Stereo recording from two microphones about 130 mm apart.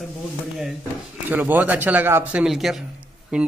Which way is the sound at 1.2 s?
15° right (ahead or behind).